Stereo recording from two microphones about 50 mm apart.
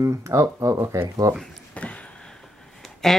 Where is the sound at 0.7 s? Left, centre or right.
Right.